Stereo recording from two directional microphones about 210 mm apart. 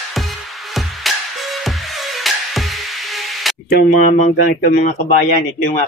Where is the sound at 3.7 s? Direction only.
40° left (ahead or behind).